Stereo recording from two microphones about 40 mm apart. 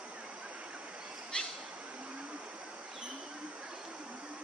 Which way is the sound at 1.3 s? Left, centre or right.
Left.